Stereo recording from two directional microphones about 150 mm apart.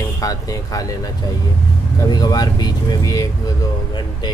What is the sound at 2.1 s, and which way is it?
Speech, 25° left (ahead or behind).